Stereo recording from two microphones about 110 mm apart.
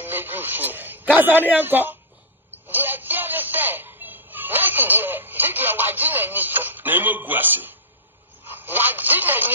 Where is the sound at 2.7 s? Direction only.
15° right (ahead or behind).